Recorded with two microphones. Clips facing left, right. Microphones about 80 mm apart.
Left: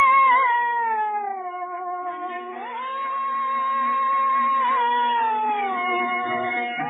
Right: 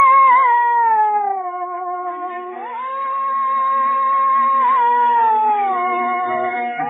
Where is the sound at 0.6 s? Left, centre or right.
Right.